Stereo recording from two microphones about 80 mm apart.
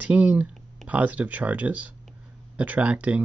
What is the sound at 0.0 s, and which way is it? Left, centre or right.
Speech, centre.